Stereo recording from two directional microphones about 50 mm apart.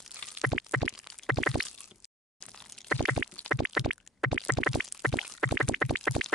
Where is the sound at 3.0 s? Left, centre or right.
Centre.